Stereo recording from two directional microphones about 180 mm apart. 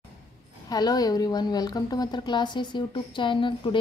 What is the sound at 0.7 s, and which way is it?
A woman's voice, 20° left (ahead or behind).